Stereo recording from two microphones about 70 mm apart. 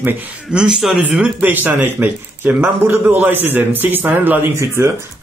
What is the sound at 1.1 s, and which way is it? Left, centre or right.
A man's voice, centre.